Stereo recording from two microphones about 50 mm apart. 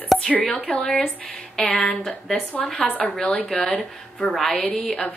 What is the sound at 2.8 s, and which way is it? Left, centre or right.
Speech, left.